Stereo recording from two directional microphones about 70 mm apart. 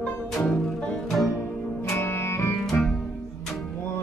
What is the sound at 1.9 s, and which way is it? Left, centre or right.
Music, left.